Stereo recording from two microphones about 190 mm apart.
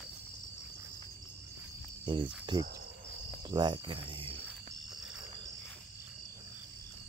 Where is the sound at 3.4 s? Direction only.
25° right (ahead or behind).